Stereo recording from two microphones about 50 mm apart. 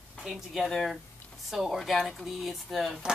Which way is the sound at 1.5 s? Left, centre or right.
Centre.